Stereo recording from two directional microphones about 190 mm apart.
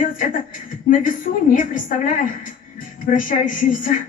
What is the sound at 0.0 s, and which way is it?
A woman's voice, 45° left (ahead or behind).